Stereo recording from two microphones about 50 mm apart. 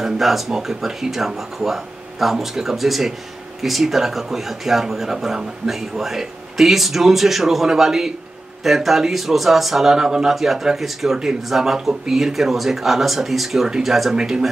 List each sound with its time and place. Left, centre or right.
0.0 s speech: centre